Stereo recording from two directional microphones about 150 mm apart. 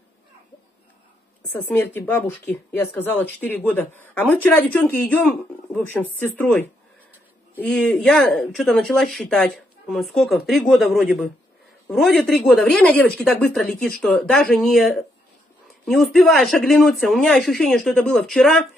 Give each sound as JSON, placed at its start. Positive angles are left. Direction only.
{"t": 1.5, "sound": "speech", "side_deg": 15}